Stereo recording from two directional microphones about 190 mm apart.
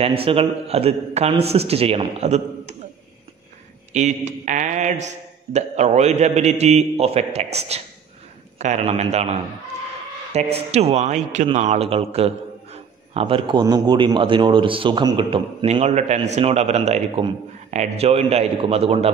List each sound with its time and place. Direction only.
0.0 s speech: 30° right (ahead or behind)
3.9 s speech: 40° right (ahead or behind)